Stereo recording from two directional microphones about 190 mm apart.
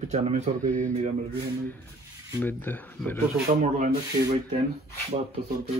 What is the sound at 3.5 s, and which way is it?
Speech, 40° right (ahead or behind).